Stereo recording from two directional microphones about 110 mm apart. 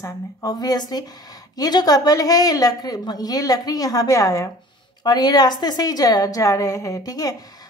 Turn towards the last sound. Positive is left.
turn(degrees=35)  # may be behind; listen again after turning